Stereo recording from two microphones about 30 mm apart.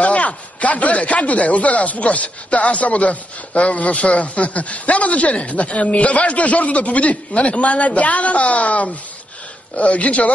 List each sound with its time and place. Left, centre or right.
0.0 s speech: left